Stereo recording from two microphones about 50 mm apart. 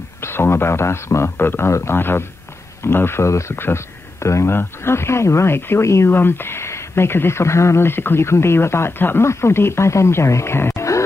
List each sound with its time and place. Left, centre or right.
0.2 s speech: left
1.4 s speech: left
1.7 s speech: left
2.0 s speech: left
3.3 s speech: left
3.5 s speech: left
4.2 s speech: left
4.5 s speech: left
6.1 s speech: left
9.2 s speech: left